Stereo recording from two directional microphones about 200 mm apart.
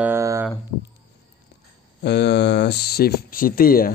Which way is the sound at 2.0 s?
55° left (ahead or behind).